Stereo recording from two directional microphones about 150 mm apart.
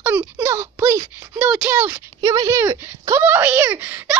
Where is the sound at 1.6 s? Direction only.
15° right (ahead or behind).